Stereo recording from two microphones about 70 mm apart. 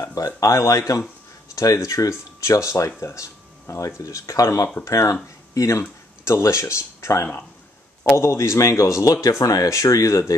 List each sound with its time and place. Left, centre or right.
0.0 s speech: left
1.5 s a sound: left
1.9 s speech: left